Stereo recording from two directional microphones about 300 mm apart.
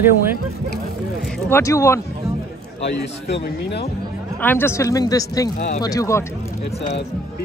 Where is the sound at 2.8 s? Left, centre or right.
Left.